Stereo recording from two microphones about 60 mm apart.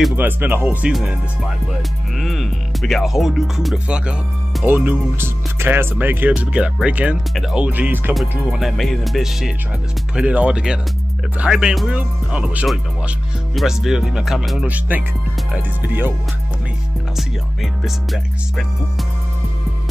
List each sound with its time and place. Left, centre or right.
0.1 s speech: right
0.8 s speech: centre
2.1 s music: centre
3.7 s speech: centre
4.6 s speech: right
5.9 s speech: right
6.3 s speech: centre
8.1 s music: centre
10.1 s speech: right
13.6 s music: centre
14.7 s speech: right
17.2 s music: centre